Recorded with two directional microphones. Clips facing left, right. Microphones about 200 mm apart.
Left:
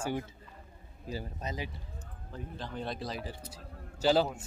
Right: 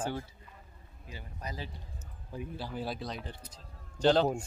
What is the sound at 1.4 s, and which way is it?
Speech, 20° left (ahead or behind).